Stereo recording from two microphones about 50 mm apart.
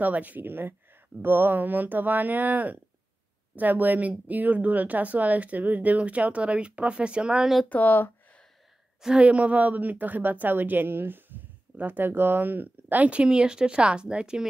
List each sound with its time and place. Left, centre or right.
0.0 s a woman's voice: right
7.7 s speech: left
9.2 s a woman's voice: right